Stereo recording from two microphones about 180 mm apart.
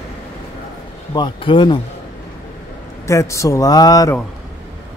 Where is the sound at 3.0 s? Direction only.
15° left (ahead or behind).